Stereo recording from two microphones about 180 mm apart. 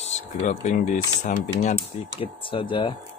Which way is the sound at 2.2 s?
30° left (ahead or behind).